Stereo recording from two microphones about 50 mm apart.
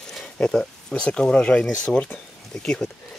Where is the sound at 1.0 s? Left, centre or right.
Centre.